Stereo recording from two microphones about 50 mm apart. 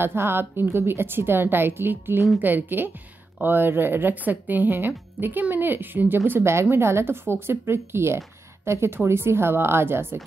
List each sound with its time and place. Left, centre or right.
0.0 s a woman's voice: right
4.1 s a woman's voice: right
6.4 s speech: right